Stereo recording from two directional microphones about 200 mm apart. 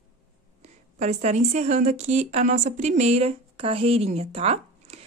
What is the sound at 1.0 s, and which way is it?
A woman's voice, 35° right (ahead or behind).